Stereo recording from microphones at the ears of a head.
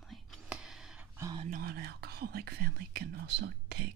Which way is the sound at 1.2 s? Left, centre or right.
Right.